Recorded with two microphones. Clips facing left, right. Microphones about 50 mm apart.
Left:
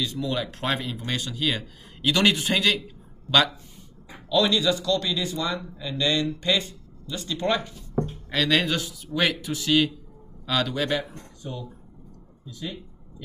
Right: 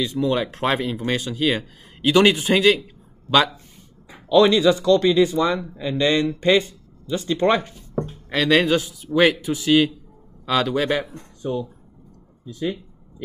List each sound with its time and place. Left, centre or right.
0.0 s speech: right
4.3 s speech: right
7.9 s speech: centre